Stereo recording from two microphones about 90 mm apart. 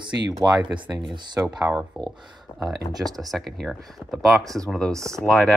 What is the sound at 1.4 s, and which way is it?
Speech, 30° right (ahead or behind).